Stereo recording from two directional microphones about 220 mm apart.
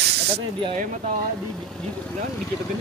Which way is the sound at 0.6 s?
35° right (ahead or behind).